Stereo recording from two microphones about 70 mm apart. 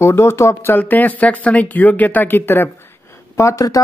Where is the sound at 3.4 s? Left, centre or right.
Left.